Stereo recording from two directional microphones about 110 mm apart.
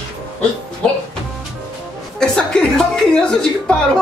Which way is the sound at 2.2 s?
5° left (ahead or behind).